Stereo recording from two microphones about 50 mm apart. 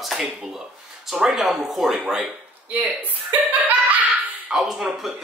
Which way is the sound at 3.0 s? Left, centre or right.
Right.